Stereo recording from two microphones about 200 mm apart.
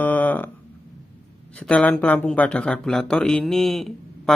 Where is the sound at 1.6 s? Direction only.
5° left (ahead or behind).